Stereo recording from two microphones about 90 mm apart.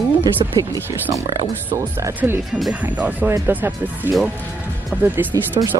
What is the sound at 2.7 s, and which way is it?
Speech, 15° right (ahead or behind).